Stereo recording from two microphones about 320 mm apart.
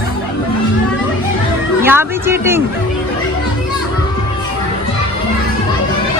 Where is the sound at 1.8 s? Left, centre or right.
Centre.